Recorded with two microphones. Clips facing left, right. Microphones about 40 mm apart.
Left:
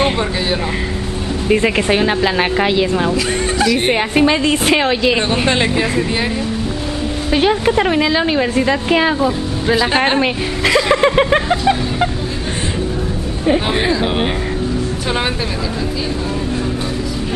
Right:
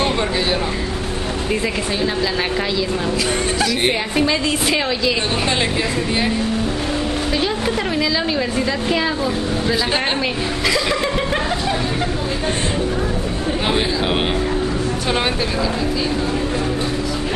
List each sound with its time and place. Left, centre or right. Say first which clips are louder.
1.5 s a woman's voice: left 9 dB; left
3.9 s a woman's voice: left 5 dB; left
5.6 s speech: left 4 dB; centre
7.3 s a woman's voice: left 10 dB; left
9.9 s a woman's voice: left 6 dB; centre
10.7 s a woman's voice: left 8 dB; left